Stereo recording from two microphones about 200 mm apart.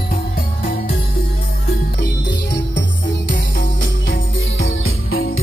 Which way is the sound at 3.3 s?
65° left (ahead or behind).